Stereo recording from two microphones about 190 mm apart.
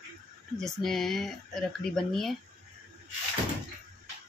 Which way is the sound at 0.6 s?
Centre (ahead or behind).